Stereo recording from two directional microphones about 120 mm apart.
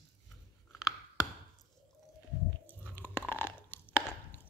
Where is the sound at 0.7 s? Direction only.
Centre (ahead or behind).